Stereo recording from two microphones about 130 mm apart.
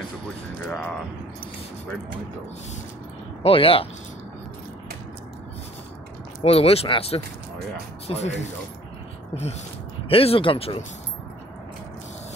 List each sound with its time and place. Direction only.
0.7 s a sound: 10° left (ahead or behind)
3.4 s speech: 45° left (ahead or behind)
6.4 s speech: 50° left (ahead or behind)